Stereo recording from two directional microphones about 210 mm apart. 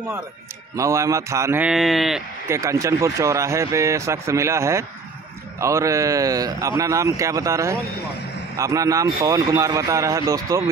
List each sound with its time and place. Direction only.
0.7 s speech: 15° right (ahead or behind)
2.4 s speech: 15° right (ahead or behind)